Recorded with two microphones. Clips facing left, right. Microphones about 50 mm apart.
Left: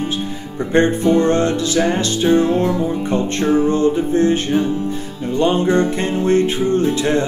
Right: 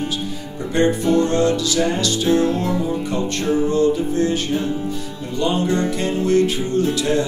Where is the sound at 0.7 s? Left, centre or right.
Left.